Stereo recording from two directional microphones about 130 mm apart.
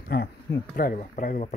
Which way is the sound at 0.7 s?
90° left.